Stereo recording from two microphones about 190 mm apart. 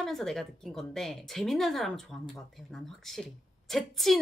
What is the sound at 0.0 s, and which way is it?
A woman's voice, centre (ahead or behind).